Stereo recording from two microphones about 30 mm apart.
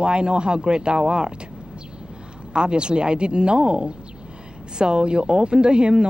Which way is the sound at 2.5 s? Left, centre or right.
Right.